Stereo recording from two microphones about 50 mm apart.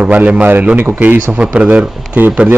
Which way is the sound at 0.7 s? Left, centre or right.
Right.